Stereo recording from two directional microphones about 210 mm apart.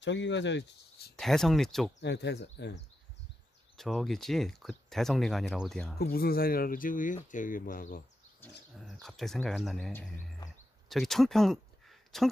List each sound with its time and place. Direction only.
0.0 s speech: 60° left (ahead or behind)
1.1 s speech: centre (ahead or behind)
2.0 s speech: 55° left (ahead or behind)
3.7 s speech: centre (ahead or behind)
5.9 s speech: 45° left (ahead or behind)
9.0 s speech: centre (ahead or behind)